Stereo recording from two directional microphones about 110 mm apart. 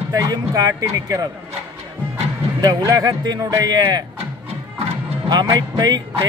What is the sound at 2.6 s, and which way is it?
Speech, 35° right (ahead or behind).